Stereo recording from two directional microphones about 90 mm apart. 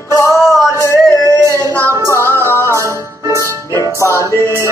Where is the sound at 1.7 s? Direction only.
30° right (ahead or behind).